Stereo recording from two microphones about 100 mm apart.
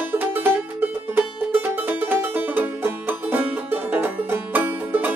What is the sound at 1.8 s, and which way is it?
Music, 20° right (ahead or behind).